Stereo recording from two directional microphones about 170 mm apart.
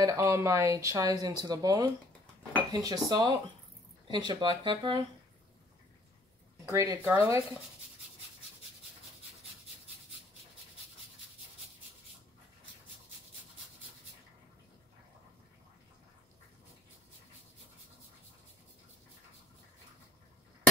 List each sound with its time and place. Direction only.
0.0 s speech: 20° right (ahead or behind)
6.6 s speech: 20° right (ahead or behind)